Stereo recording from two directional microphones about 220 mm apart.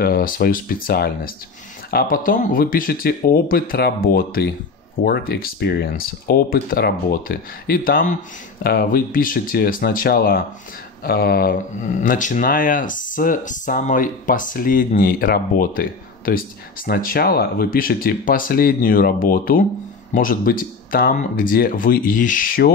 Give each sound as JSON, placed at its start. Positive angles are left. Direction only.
{"t": 0.0, "sound": "speech", "side_deg": 40}